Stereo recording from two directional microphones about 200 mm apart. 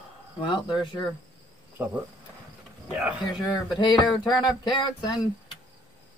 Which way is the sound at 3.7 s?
20° left (ahead or behind).